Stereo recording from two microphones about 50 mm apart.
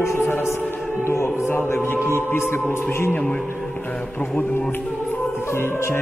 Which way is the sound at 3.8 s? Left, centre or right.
Left.